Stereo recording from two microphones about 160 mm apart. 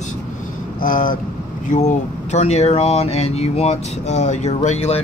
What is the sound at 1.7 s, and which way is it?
Speech, 50° left (ahead or behind).